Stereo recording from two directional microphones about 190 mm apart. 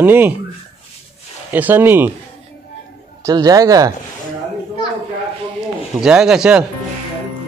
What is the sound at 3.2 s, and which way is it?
Speech, 20° right (ahead or behind).